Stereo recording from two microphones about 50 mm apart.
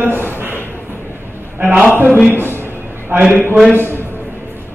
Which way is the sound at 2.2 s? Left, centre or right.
Right.